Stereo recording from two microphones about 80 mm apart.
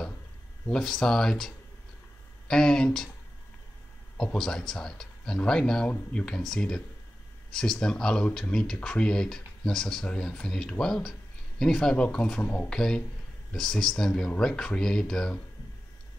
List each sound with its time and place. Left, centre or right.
0.7 s speech: centre
4.2 s speech: centre
12.6 s speech: centre